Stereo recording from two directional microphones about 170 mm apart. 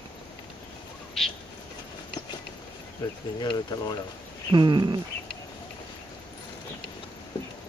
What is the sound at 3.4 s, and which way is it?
Speech, 25° left (ahead or behind).